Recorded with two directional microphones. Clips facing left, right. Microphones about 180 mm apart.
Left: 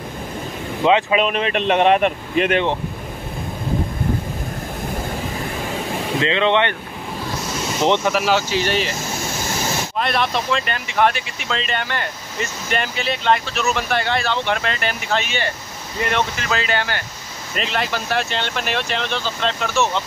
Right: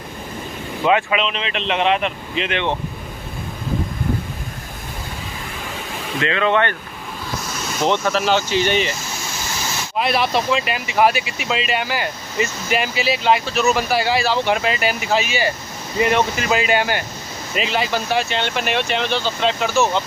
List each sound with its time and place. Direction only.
0.8 s speech: 30° left (ahead or behind)
1.2 s speech: 50° left (ahead or behind)
6.1 s speech: 25° left (ahead or behind)
7.8 s speech: 15° left (ahead or behind); by 8.9 s centre (ahead or behind)
9.9 s speech: 5° right (ahead or behind)
17.6 s speech: centre (ahead or behind)